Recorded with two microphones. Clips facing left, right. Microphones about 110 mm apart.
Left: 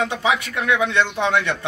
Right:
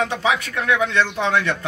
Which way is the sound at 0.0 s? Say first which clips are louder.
Even; 15° left (ahead or behind).